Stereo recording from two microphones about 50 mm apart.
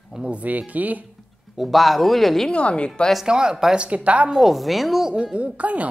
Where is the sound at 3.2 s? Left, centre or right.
Centre.